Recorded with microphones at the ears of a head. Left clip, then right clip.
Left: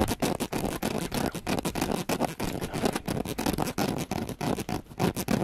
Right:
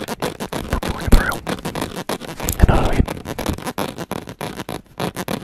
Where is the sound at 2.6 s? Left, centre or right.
Right.